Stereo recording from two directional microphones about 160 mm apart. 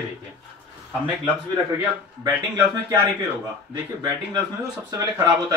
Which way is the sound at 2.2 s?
20° right (ahead or behind).